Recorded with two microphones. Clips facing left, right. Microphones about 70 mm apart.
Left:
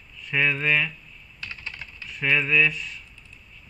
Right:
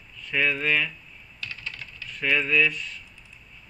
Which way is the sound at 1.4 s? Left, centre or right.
Left.